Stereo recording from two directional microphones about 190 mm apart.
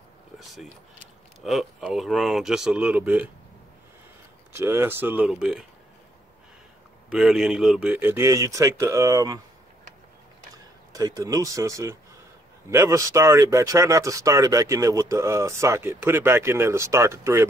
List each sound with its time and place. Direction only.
0.4 s speech: centre (ahead or behind)
4.5 s speech: 15° right (ahead or behind)
7.1 s speech: centre (ahead or behind); by 9.4 s 20° right (ahead or behind)
10.9 s speech: 20° right (ahead or behind)